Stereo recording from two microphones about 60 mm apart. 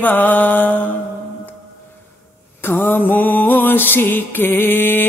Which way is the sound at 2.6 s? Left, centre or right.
Left.